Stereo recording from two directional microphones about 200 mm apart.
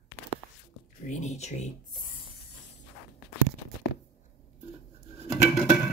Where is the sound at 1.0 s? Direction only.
35° left (ahead or behind).